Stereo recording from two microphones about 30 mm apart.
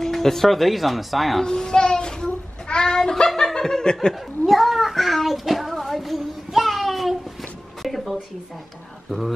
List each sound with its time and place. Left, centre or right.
0.0 s speech: centre
1.4 s child singing: left
3.5 s laughter: left
4.1 s child singing: centre
7.8 s a sound: centre